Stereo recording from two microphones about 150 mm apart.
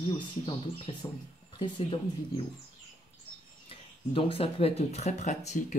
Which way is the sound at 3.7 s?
40° left (ahead or behind).